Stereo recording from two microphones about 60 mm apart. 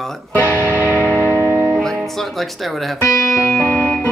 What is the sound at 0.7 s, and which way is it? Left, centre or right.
Music, right.